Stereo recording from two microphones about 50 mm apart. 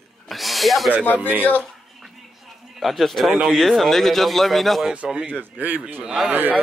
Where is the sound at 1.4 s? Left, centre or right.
Left.